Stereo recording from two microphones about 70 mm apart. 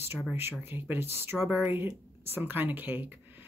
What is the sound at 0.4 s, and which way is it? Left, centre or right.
Speech, right.